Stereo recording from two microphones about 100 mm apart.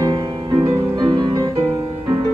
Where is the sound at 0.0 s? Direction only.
45° right (ahead or behind).